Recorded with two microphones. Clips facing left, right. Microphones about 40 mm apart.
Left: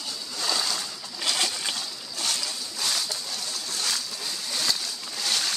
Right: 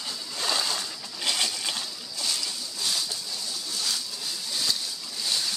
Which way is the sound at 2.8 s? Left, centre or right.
Left.